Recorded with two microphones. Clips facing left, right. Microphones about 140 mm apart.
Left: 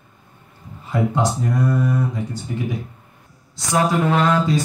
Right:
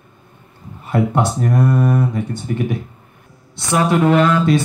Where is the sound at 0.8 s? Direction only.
70° right (ahead or behind).